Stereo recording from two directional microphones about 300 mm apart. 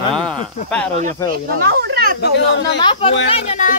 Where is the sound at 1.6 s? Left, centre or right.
Right.